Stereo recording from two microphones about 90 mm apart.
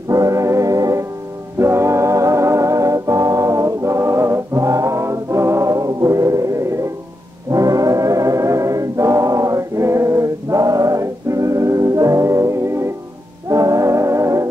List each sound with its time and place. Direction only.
0.1 s brass instrument: 40° right (ahead or behind)
1.6 s music: 30° right (ahead or behind)